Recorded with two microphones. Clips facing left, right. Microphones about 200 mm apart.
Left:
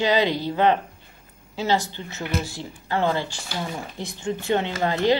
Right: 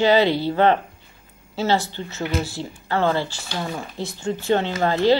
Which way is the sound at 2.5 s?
15° left (ahead or behind).